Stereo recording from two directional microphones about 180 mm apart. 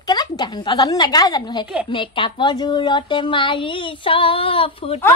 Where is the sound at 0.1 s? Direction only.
25° left (ahead or behind).